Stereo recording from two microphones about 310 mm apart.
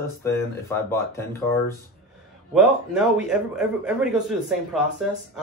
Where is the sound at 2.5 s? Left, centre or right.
Centre.